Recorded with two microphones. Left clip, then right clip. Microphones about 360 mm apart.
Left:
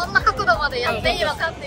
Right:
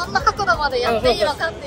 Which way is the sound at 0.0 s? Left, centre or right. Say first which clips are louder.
Even; centre.